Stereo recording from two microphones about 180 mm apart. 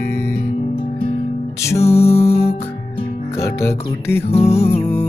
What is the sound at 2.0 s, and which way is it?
Music, 35° left (ahead or behind).